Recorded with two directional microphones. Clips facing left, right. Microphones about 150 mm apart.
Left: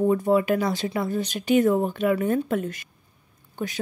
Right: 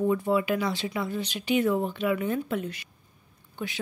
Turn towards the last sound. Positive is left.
turn(degrees=45)  # may be behind; listen again after turning